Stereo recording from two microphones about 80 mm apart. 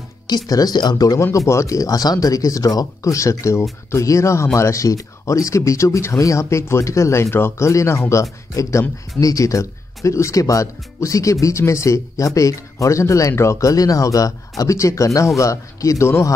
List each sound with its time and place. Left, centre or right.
0.5 s speech: left